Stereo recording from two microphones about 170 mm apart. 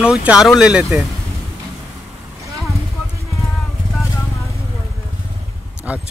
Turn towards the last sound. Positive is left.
turn(degrees=-10)  # may be behind; listen again after turning